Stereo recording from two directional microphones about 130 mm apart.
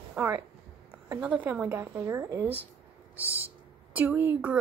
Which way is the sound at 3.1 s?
10° right (ahead or behind).